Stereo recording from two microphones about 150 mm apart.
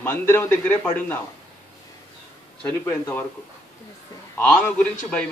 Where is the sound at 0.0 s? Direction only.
15° left (ahead or behind).